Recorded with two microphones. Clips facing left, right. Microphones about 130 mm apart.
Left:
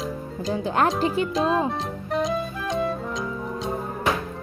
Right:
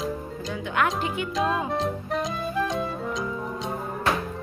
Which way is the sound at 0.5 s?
35° left (ahead or behind).